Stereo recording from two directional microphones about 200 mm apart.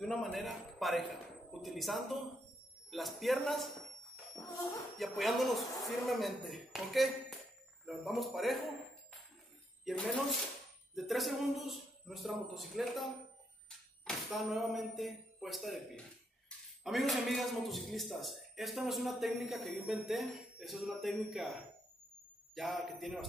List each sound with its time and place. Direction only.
0.0 s a man's voice: centre (ahead or behind)
4.9 s a man's voice: centre (ahead or behind)
9.8 s a man's voice: centre (ahead or behind)
22.6 s a man's voice: centre (ahead or behind)